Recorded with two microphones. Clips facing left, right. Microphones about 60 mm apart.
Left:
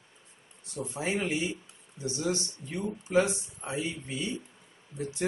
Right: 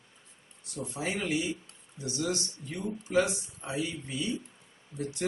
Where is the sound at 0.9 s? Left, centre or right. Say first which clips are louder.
Left 1 dB; left.